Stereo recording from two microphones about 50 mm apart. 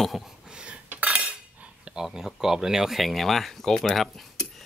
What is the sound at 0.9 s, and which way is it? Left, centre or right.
Cutlery, right.